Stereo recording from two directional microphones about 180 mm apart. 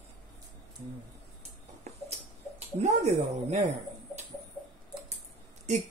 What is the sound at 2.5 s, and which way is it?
Speech, 35° right (ahead or behind).